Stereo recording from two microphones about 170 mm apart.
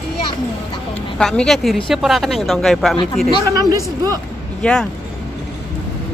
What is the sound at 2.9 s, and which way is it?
Speech, 30° left (ahead or behind).